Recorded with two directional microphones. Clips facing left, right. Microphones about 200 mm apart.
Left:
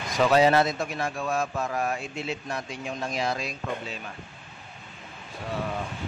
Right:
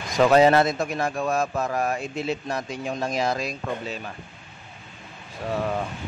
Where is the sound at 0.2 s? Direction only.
50° right (ahead or behind).